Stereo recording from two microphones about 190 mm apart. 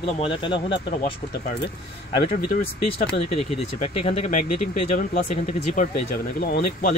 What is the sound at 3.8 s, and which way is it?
Speech, 35° left (ahead or behind).